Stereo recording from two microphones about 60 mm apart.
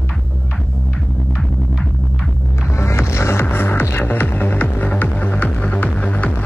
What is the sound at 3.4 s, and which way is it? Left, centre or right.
Music, left.